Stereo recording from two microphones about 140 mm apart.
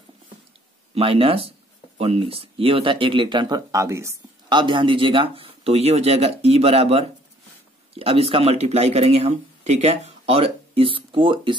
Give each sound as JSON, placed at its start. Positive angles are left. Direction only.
{"t": 0.9, "sound": "speech", "side_deg": -40}
{"t": 4.5, "sound": "speech", "side_deg": -35}